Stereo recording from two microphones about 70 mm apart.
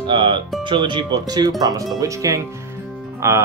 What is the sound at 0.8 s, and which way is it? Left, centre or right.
Speech, right.